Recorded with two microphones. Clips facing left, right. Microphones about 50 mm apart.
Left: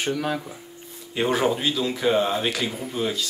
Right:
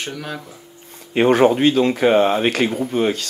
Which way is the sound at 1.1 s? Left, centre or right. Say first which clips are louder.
Right 8 dB; right.